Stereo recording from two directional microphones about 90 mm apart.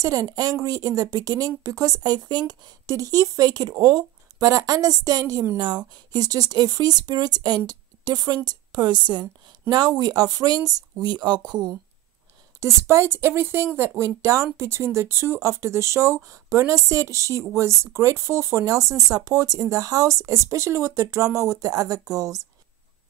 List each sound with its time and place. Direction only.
0.0 s speech: 40° right (ahead or behind)
5.6 s speech: 55° right (ahead or behind)
11.0 s speech: 55° right (ahead or behind)
12.5 s a woman's voice: 35° right (ahead or behind)